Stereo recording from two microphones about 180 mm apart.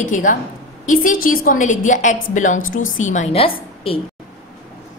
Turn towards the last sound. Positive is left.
turn(degrees=30)  # may be behind; listen again after turning